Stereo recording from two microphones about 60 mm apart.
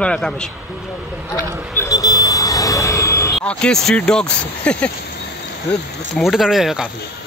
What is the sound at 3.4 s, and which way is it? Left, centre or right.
Speech, centre.